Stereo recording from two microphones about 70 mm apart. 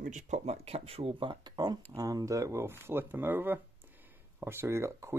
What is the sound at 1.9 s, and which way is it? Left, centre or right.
Speech, right.